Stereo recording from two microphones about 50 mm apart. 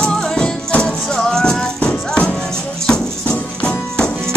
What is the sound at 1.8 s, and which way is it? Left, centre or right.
Music, left.